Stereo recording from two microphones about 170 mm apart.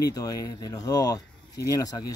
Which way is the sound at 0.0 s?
20° left (ahead or behind).